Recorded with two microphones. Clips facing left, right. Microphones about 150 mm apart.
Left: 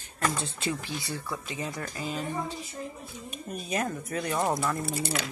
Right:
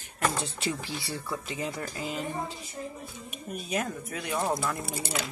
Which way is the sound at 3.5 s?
Centre (ahead or behind).